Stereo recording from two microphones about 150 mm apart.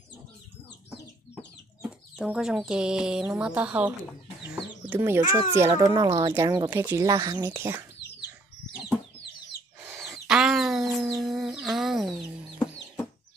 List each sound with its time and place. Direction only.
1.8 s chicken: 5° right (ahead or behind)
3.3 s speech: 5° right (ahead or behind)
4.5 s chicken: 10° right (ahead or behind)
5.8 s speech: 25° right (ahead or behind)
9.9 s chicken: 5° right (ahead or behind)
11.2 s a sound: centre (ahead or behind)